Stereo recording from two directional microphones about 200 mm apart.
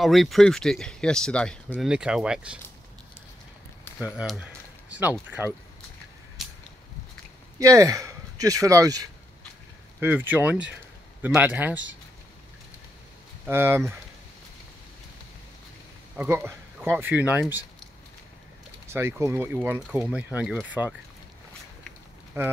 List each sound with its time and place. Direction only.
0.0 s speech: centre (ahead or behind)
3.8 s a sound: 10° left (ahead or behind)
4.2 s speech: centre (ahead or behind)
7.5 s speech: 15° right (ahead or behind)
13.5 s speech: 10° right (ahead or behind)
16.2 s speech: 10° right (ahead or behind)
18.9 s speech: 15° right (ahead or behind)
22.3 s speech: 15° right (ahead or behind)